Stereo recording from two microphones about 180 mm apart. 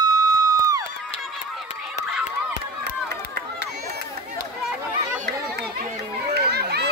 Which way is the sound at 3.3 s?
65° right (ahead or behind).